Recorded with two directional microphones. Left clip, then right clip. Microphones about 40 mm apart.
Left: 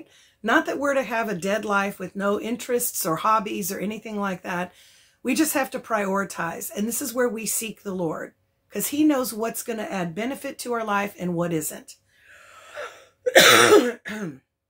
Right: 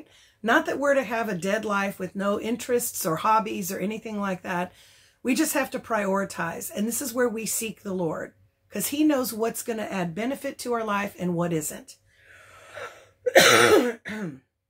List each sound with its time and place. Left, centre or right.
0.4 s speech: centre
1.9 s speech: centre; by 3.7 s left
3.7 s speech: centre
5.5 s speech: left; by 7.3 s centre
7.3 s speech: left
8.7 s speech: centre
12.7 s gasp: centre
13.3 s cough: left
13.8 s speech: left